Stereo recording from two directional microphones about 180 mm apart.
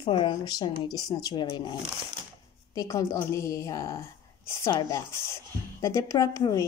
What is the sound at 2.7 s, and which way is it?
Speech, 20° left (ahead or behind).